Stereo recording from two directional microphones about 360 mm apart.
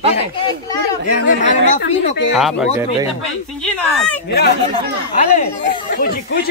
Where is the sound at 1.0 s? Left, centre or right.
Left.